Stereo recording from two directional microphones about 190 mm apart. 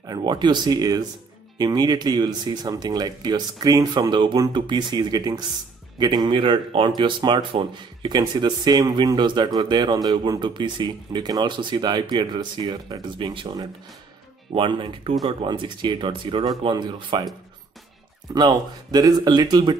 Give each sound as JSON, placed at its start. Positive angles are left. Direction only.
{"t": 0.0, "sound": "speech", "side_deg": -20}
{"t": 18.3, "sound": "speech", "side_deg": -20}